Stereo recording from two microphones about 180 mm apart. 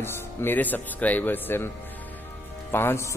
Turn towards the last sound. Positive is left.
turn(degrees=15)  # may be behind; listen again after turning